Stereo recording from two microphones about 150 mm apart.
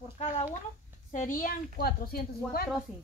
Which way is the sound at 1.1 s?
60° left (ahead or behind).